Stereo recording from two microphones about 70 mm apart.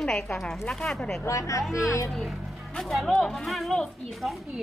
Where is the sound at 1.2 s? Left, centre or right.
Left.